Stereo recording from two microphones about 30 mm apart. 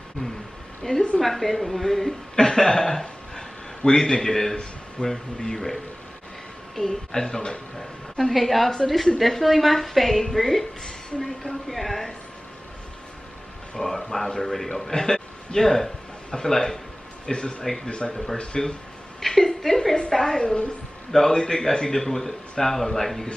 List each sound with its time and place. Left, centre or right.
0.8 s speech: left
1.2 s a woman's voice: centre
2.3 s speech: centre
5.0 s speech: left
5.4 s a man's voice: centre
6.9 s speech: left
8.4 s a woman's voice: centre
13.7 s a man's voice: centre
14.9 s a man's voice: centre
17.3 s speech: left
18.1 s a man's voice: centre
18.4 s speech: left
19.1 s a sound: centre
20.1 s a woman's voice: centre